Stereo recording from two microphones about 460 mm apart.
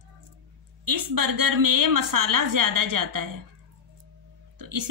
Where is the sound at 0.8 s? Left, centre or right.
Right.